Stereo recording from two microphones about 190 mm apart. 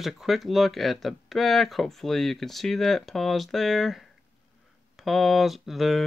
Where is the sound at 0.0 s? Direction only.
Centre (ahead or behind).